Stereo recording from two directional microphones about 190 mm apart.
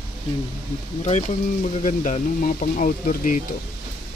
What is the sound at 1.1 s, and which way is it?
Speech, 35° left (ahead or behind).